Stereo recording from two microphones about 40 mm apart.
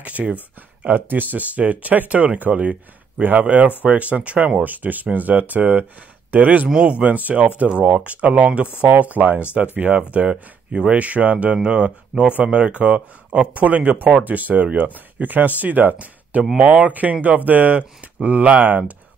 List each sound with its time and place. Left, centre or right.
0.0 s speech: right
0.8 s speech: right
3.2 s speech: right
4.6 s speech: right
10.3 s speech: right
10.9 s speech: right
11.5 s speech: right
16.5 s speech: right